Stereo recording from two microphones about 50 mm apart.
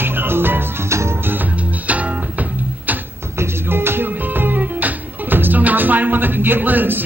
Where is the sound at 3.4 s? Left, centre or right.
Right.